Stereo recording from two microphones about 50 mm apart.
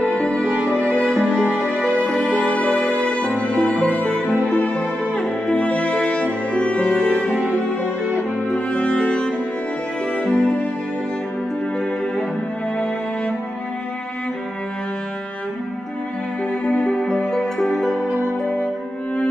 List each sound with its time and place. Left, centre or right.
0.0 s music: left
1.2 s music: right
1.7 s music: right
2.5 s music: left
3.8 s music: right
4.5 s music: left
8.5 s music: left
12.7 s music: left
16.6 s music: centre